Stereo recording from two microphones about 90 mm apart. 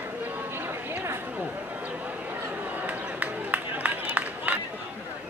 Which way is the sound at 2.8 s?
20° right (ahead or behind).